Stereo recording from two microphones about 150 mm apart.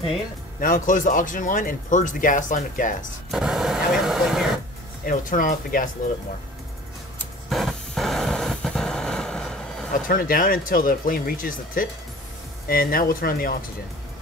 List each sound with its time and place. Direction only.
0.6 s speech: 65° left (ahead or behind)
3.3 s speech: centre (ahead or behind)
5.0 s speech: 65° left (ahead or behind)
7.4 s a sound: centre (ahead or behind)
10.0 s speech: 70° left (ahead or behind)
12.6 s speech: 80° left